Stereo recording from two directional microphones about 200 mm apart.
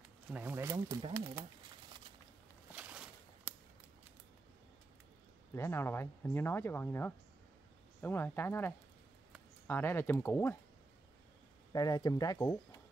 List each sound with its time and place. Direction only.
0.3 s speech: 10° right (ahead or behind)
2.7 s a sound: 5° right (ahead or behind)
5.5 s speech: 10° left (ahead or behind)
11.7 s speech: 20° left (ahead or behind)